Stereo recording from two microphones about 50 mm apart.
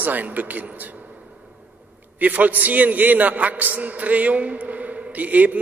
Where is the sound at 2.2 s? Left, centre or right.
Right.